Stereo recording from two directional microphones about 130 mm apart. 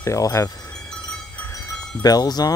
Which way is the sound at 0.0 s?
25° left (ahead or behind).